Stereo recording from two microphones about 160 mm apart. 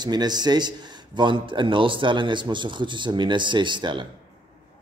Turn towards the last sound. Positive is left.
turn(degrees=-30)  # may be behind; listen again after turning